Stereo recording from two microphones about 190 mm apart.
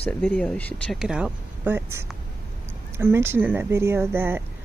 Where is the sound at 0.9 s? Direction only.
5° right (ahead or behind).